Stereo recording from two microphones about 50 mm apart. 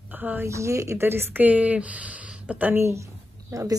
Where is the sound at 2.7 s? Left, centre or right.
Right.